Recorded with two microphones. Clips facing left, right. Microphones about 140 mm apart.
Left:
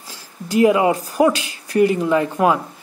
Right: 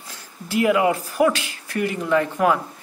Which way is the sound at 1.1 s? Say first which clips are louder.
Left 3 dB; 15° left (ahead or behind).